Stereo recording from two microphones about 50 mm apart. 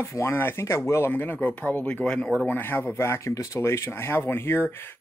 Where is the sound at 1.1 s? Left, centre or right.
Left.